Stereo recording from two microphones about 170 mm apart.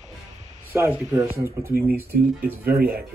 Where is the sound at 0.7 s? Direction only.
15° right (ahead or behind).